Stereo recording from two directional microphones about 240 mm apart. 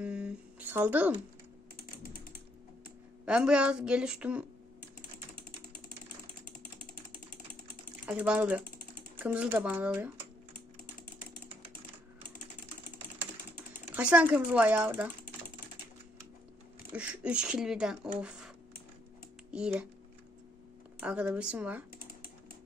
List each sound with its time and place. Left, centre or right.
0.0 s a sound: centre
1.8 s typing: left
3.3 s speech: centre
8.0 s speech: centre
13.9 s speech: centre
16.9 s speech: centre
19.5 s speech: centre
21.0 s speech: centre